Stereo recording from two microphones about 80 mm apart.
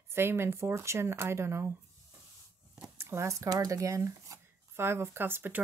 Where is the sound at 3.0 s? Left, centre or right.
Right.